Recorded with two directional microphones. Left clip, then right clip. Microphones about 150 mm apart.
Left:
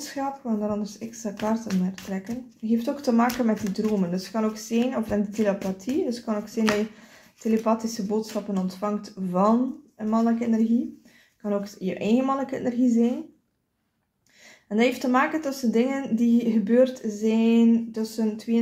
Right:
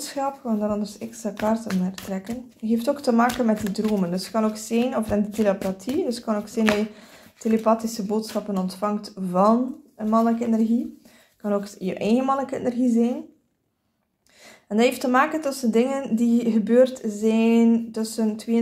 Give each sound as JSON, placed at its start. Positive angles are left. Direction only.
{"t": 0.0, "sound": "speech", "side_deg": -30}
{"t": 14.7, "sound": "speech", "side_deg": -30}